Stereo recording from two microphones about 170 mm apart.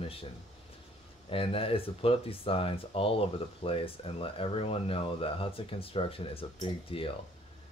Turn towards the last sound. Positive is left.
turn(degrees=30)  # may be behind; listen again after turning